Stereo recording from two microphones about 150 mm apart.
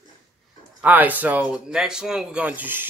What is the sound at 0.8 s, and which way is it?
Speech, 10° right (ahead or behind).